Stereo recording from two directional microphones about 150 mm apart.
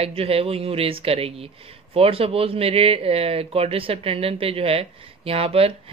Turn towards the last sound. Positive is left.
turn(degrees=-40)  # may be behind; listen again after turning